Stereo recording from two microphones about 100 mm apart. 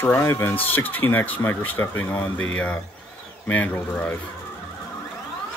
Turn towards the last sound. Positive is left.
turn(degrees=20)  # may be behind; listen again after turning